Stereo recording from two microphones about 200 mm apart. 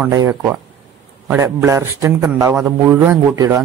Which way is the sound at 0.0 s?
15° right (ahead or behind).